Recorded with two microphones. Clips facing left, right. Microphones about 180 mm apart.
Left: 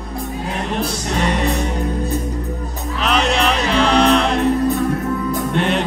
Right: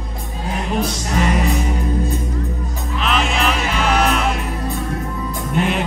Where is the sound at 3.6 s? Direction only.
35° left (ahead or behind).